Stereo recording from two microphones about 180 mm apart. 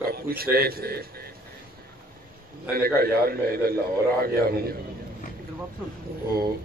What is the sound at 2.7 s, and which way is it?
A man's voice, 55° right (ahead or behind).